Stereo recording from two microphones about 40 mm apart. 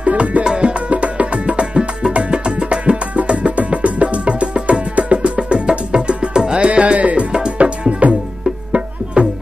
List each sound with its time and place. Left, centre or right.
0.0 s music: right
7.3 s music: right